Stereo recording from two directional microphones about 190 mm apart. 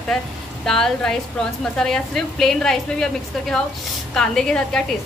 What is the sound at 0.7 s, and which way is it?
A woman's voice, centre (ahead or behind).